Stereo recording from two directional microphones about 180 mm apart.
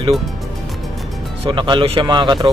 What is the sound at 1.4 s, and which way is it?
Speech, 25° right (ahead or behind).